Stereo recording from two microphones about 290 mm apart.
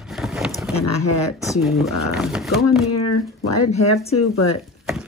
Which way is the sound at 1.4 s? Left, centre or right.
Centre.